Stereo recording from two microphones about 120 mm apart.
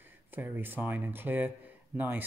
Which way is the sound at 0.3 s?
15° right (ahead or behind).